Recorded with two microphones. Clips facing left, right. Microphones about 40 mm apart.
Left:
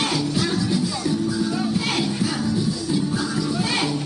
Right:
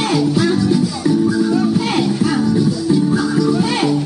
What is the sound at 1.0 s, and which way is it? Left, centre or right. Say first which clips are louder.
Music: right 11 dB; centre.